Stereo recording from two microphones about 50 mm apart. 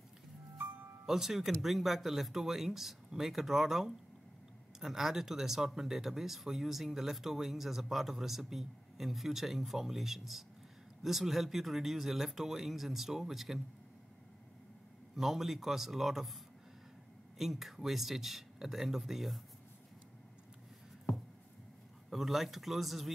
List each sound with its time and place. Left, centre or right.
1.0 s speech: centre
15.1 s speech: centre
17.4 s speech: centre
22.1 s speech: centre